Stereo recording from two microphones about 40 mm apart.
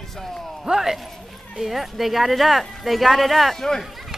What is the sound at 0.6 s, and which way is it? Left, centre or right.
Speech, centre.